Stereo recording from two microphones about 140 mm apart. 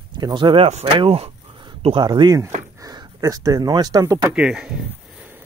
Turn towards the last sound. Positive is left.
turn(degrees=-5)  # may be behind; listen again after turning